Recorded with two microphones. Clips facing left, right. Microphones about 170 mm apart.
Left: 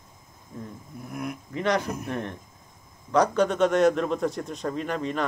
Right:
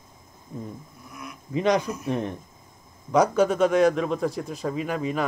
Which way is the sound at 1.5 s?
15° right (ahead or behind).